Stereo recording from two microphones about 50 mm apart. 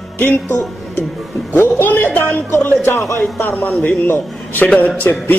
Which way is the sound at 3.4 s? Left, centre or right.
Left.